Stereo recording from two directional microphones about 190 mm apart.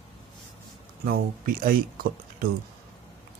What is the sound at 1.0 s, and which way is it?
Speech, 50° right (ahead or behind).